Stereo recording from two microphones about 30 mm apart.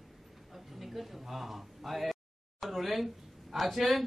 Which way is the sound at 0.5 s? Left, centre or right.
Centre.